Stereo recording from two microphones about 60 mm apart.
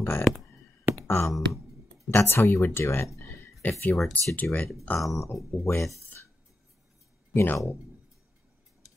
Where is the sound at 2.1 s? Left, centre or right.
Left.